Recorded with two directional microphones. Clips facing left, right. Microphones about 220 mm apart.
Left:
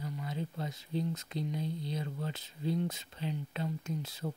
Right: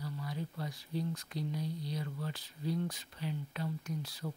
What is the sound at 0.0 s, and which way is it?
Speech, 20° left (ahead or behind).